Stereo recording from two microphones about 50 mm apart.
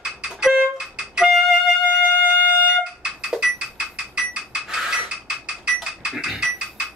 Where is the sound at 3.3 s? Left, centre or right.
Centre.